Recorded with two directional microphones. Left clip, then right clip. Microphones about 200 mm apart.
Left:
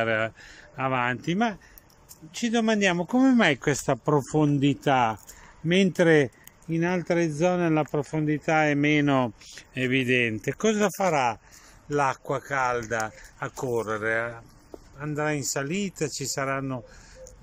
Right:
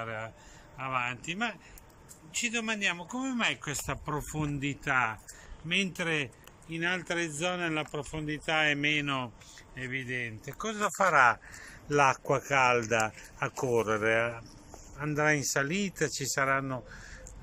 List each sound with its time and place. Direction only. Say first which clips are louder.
0.0 s speech: left 13 dB; 50° left (ahead or behind)
6.7 s speech: left 6 dB; 25° left (ahead or behind)
9.1 s speech: left 9 dB; 50° left (ahead or behind)
10.6 s speech: left 4 dB; 35° left (ahead or behind)
11.9 s speech: even; centre (ahead or behind)